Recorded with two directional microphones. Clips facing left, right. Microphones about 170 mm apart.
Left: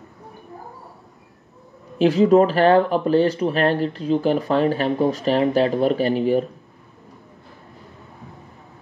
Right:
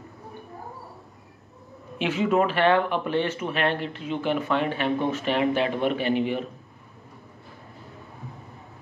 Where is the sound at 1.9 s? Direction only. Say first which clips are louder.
Left 9 dB; 35° left (ahead or behind).